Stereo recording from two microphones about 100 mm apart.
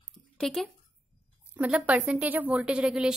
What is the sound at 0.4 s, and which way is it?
Speech, 5° left (ahead or behind).